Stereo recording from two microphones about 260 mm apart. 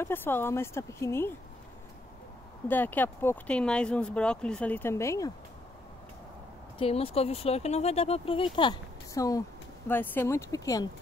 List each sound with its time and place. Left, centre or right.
0.0 s speech: centre
2.7 s speech: centre
6.8 s speech: left